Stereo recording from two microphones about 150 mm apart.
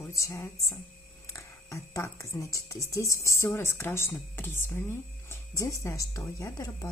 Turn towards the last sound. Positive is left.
turn(degrees=20)  # may be behind; listen again after turning